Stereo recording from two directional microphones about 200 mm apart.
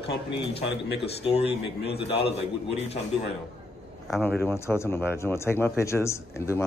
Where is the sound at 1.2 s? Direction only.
30° left (ahead or behind).